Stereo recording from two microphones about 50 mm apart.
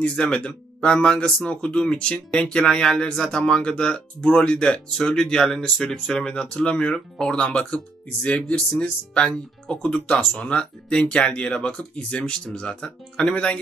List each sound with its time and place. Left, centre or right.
0.1 s speech: left